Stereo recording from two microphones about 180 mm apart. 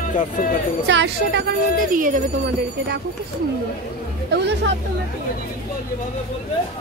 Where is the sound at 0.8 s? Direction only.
75° right (ahead or behind).